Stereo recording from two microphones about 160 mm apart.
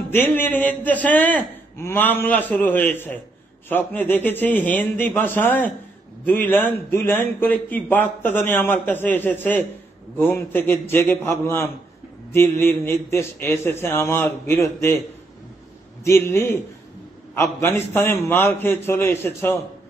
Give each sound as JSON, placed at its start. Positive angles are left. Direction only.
{"t": 0.1, "sound": "a man's voice", "side_deg": 10}
{"t": 16.0, "sound": "a man's voice", "side_deg": 15}